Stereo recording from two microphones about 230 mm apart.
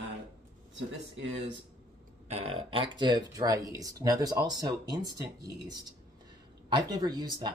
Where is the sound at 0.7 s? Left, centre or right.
Right.